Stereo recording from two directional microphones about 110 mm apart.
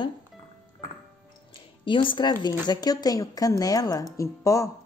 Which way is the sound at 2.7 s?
35° left (ahead or behind).